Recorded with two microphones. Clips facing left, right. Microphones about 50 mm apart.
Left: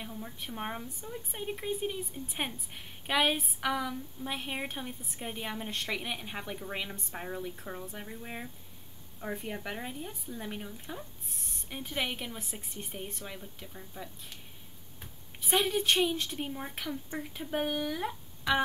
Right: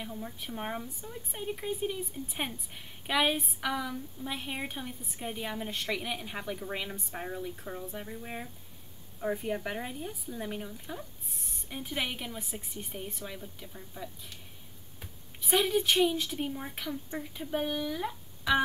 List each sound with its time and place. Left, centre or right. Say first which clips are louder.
0.1 s speech: right 2 dB; centre
15.0 s a sound: even; centre
16.2 s speech: right 2 dB; centre
17.3 s speech: even; centre